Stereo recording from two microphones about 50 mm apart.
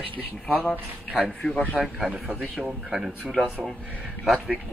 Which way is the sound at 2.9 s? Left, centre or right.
Centre.